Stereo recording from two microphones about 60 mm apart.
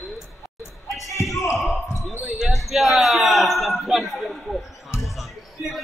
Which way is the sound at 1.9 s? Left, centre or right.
Left.